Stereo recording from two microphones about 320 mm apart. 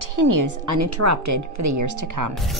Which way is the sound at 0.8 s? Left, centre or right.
Right.